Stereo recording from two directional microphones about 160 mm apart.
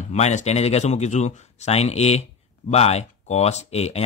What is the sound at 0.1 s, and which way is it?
Speech, 45° left (ahead or behind).